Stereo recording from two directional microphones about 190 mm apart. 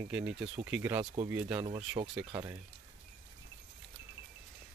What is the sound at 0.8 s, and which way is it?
Speech, 10° right (ahead or behind).